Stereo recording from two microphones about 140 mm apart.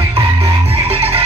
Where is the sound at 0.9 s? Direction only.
45° right (ahead or behind).